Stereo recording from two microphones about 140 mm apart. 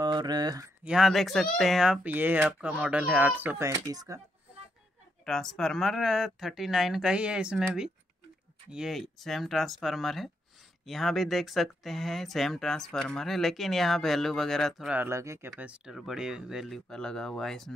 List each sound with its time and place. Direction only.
0.0 s speech: 30° right (ahead or behind)
0.8 s speech: 5° right (ahead or behind); by 4.2 s 25° right (ahead or behind)
5.2 s speech: 5° left (ahead or behind)
15.0 s speech: 20° right (ahead or behind)
15.6 s speech: 5° right (ahead or behind)